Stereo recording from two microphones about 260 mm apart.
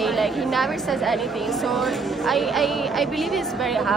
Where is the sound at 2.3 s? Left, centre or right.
Centre.